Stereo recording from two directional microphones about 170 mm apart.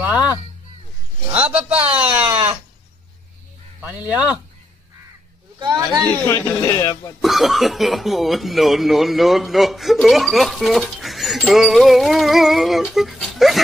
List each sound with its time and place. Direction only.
0.0 s a sound: 10° right (ahead or behind)
4.1 s speech: 5° right (ahead or behind)
5.6 s speech: 20° right (ahead or behind)
6.2 s speech: 15° left (ahead or behind)
7.2 s speech: centre (ahead or behind)